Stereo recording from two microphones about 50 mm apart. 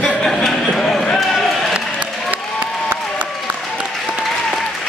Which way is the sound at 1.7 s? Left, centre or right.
Right.